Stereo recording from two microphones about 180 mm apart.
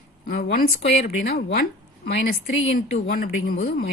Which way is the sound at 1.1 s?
60° left (ahead or behind).